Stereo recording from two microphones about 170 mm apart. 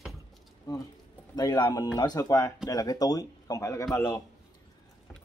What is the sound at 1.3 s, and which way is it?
Speech, 25° left (ahead or behind).